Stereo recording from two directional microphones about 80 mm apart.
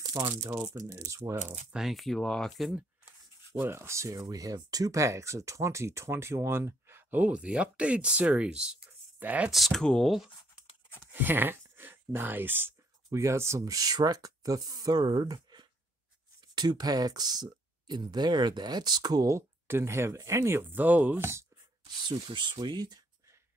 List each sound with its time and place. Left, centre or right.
0.1 s speech: right
1.7 s speech: centre
3.5 s speech: right
9.5 s speech: centre
11.1 s speech: right
13.1 s speech: right
19.2 s speech: right
20.7 s speech: right
21.2 s speech: right
21.8 s speech: right